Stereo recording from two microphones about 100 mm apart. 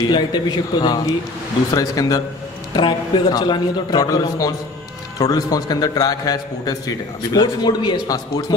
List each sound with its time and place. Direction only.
0.0 s a man's voice: 45° left (ahead or behind)